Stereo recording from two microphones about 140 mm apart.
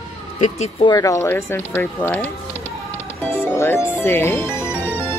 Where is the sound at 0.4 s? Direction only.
50° left (ahead or behind).